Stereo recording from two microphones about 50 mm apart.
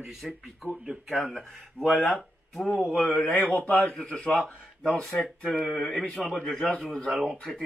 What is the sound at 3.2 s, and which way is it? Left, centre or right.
Speech, left.